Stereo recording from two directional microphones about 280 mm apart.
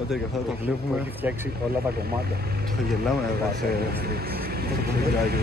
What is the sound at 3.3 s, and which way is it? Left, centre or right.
Speech, right.